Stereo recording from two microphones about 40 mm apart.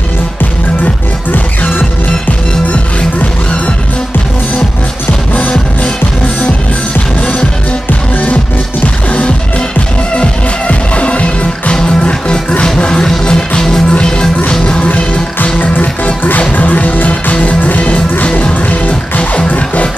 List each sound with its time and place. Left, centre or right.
0.8 s music: left
10.1 s music: left
11.7 s music: left
14.6 s music: left
15.6 s music: left
18.2 s music: left